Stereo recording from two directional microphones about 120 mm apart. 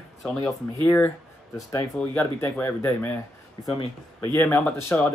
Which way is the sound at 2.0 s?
10° left (ahead or behind).